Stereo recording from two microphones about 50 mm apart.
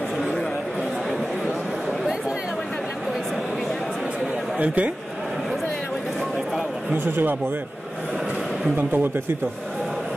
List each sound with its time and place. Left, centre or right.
4.6 s speech: right
7.1 s speech: right
8.7 s speech: right